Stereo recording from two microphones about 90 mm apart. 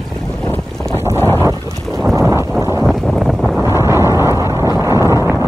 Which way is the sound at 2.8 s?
5° left (ahead or behind).